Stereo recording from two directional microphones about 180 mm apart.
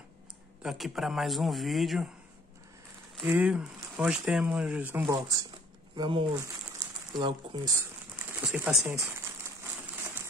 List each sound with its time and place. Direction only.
0.6 s speech: centre (ahead or behind)
3.2 s speech: 5° right (ahead or behind)
5.0 s speech: 20° right (ahead or behind)
8.4 s speech: 5° right (ahead or behind)
8.9 s crumpling: 15° right (ahead or behind)